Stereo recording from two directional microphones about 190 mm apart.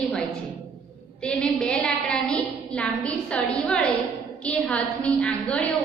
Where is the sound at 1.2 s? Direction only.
5° left (ahead or behind).